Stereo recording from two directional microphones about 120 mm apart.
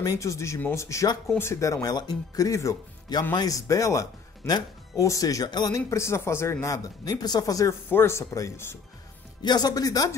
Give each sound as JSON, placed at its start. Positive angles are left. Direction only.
{"t": 0.0, "sound": "speech", "side_deg": 30}
{"t": 9.4, "sound": "speech", "side_deg": 35}